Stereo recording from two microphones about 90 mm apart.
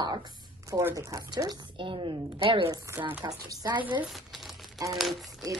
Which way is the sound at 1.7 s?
65° right (ahead or behind).